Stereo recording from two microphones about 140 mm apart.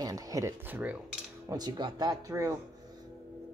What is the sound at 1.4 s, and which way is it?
Speech, 30° right (ahead or behind).